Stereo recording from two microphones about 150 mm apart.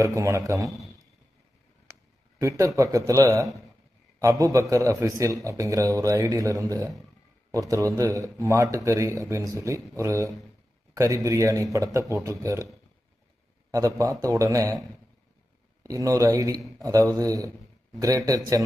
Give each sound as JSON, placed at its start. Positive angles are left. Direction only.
{"t": 0.0, "sound": "speech", "side_deg": -20}
{"t": 2.4, "sound": "speech", "side_deg": -20}
{"t": 13.7, "sound": "speech", "side_deg": -20}
{"t": 15.8, "sound": "speech", "side_deg": -20}